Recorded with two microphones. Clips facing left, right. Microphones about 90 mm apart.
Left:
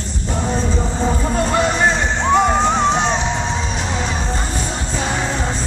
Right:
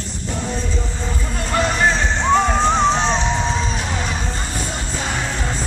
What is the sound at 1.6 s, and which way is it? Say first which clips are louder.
Music: right 3 dB; 15° left (ahead or behind).